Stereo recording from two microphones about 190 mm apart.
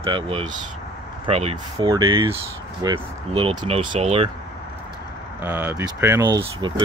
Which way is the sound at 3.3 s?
30° right (ahead or behind).